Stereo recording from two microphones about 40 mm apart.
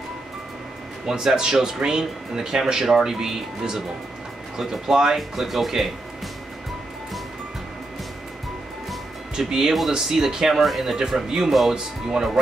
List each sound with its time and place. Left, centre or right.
1.0 s speech: centre
9.3 s speech: centre
10.5 s speech: centre
11.7 s speech: centre